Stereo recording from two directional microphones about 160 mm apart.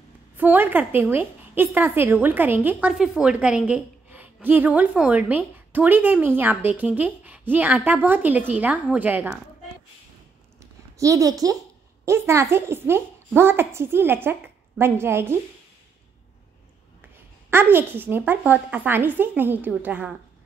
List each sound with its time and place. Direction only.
0.4 s a woman's voice: 10° right (ahead or behind)
10.6 s a sound: 20° right (ahead or behind)
12.0 s a woman's voice: 15° right (ahead or behind)
17.5 s a woman's voice: 15° right (ahead or behind)